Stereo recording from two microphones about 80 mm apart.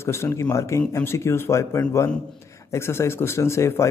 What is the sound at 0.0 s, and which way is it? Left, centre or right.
A man's voice, left.